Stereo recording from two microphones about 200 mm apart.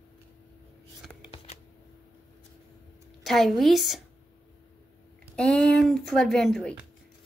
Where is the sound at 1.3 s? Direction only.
30° left (ahead or behind).